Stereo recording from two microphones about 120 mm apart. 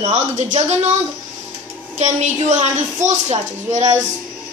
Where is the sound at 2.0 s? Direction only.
75° right (ahead or behind).